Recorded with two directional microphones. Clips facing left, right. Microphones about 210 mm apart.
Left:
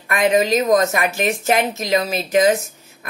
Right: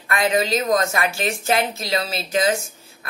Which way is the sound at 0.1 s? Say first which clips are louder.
Left 4 dB; 15° left (ahead or behind).